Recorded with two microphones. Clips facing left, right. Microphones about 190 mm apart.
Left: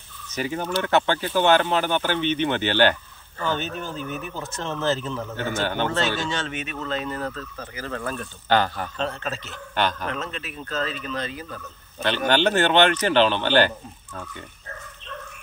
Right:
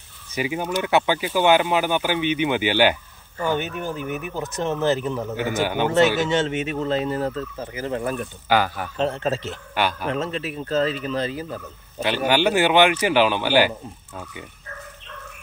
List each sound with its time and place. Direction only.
0.3 s speech: 10° right (ahead or behind)
9.0 s speech: 25° right (ahead or behind)
9.8 s speech: 10° right (ahead or behind)
10.1 s speech: 25° right (ahead or behind)
12.3 s speech: 10° right (ahead or behind)